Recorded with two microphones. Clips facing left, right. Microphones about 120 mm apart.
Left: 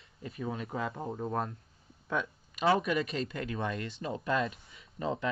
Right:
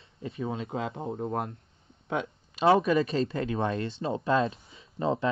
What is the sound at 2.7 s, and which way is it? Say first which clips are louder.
Speech: right 8 dB; 30° right (ahead or behind).